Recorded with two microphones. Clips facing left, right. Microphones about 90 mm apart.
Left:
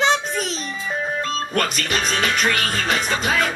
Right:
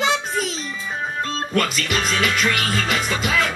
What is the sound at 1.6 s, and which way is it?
Music, 35° left (ahead or behind).